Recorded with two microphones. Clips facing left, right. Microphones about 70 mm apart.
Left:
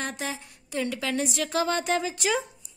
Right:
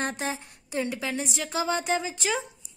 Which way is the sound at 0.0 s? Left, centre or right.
Right.